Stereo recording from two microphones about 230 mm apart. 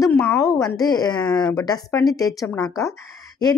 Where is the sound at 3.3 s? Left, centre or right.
Centre.